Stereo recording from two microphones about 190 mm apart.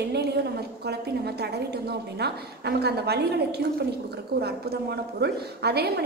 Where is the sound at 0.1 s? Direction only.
60° right (ahead or behind).